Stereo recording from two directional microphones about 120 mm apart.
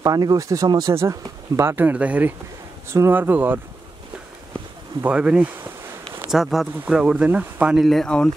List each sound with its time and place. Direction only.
0.0 s speech: 30° right (ahead or behind); by 3.6 s 15° right (ahead or behind)
5.0 s speech: 10° right (ahead or behind); by 8.3 s 5° left (ahead or behind)